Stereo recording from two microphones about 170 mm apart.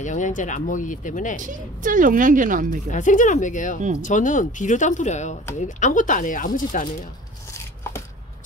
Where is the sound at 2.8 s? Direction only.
50° left (ahead or behind).